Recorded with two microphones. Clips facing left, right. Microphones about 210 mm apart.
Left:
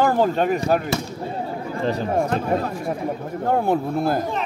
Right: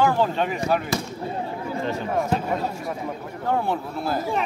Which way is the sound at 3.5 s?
50° left (ahead or behind).